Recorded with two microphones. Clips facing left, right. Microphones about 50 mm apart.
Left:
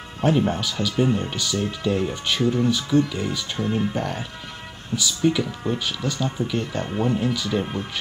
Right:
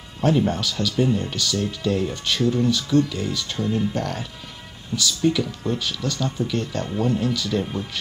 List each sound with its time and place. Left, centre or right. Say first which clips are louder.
0.2 s speech: even; centre
3.6 s speech: even; left
3.9 s speech: even; centre